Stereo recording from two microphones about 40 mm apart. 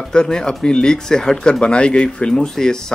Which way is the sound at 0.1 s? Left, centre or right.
Centre.